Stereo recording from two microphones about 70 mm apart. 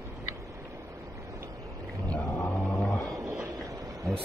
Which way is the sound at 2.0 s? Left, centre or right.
Centre.